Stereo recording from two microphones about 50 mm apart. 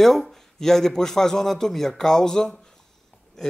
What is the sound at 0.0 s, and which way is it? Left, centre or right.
Speech, centre.